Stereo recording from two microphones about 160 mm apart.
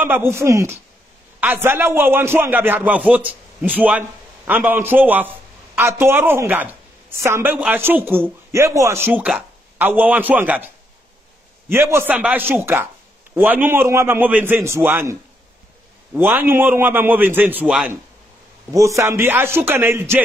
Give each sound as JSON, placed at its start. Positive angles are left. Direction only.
{"t": 0.0, "sound": "a man's voice", "side_deg": -15}
{"t": 11.7, "sound": "a man's voice", "side_deg": -15}
{"t": 16.2, "sound": "a man's voice", "side_deg": -15}
{"t": 18.7, "sound": "a man's voice", "side_deg": -20}